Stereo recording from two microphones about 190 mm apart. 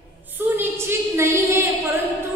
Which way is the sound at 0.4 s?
10° right (ahead or behind).